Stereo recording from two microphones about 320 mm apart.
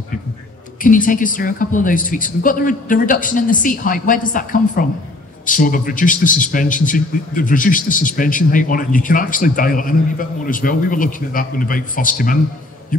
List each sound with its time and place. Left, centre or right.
0.8 s a man's voice: left